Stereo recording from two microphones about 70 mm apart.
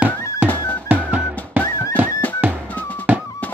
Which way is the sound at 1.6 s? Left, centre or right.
Left.